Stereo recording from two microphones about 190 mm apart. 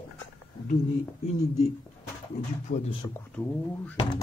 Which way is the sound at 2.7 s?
45° left (ahead or behind).